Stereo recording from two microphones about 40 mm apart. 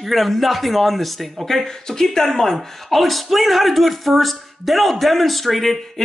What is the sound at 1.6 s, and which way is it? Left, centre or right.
Speech, centre.